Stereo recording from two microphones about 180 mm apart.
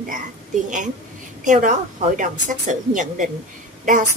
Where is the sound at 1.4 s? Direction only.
45° right (ahead or behind).